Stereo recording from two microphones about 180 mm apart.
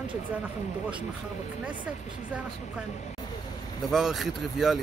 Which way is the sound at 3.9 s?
Centre (ahead or behind).